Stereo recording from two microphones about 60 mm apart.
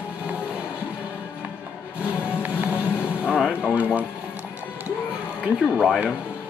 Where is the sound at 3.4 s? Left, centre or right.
Centre.